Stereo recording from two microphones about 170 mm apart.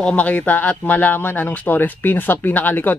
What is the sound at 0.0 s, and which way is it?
Speech, 5° left (ahead or behind).